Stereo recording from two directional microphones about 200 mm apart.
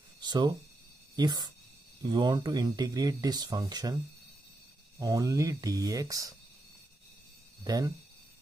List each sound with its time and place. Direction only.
0.2 s speech: 20° right (ahead or behind)
7.6 s speech: 20° right (ahead or behind)